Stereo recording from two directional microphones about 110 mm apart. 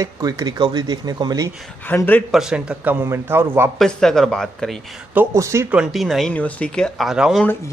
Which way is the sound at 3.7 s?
5° left (ahead or behind).